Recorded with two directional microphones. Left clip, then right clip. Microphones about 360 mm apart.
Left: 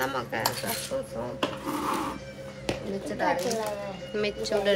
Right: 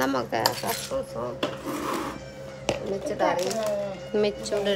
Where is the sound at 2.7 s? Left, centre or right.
Centre.